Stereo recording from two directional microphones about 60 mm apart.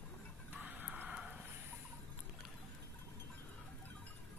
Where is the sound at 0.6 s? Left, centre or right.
Right.